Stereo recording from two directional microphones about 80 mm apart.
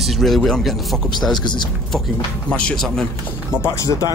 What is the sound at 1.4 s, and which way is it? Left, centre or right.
Speech, left.